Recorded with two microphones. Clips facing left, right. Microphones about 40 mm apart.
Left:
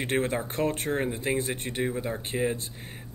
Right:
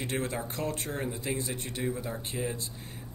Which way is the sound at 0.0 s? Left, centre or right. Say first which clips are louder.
Left 5 dB; left.